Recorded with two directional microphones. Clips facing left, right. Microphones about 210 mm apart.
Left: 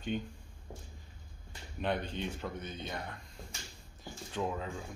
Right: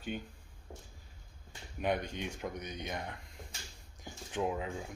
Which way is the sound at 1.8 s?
10° right (ahead or behind).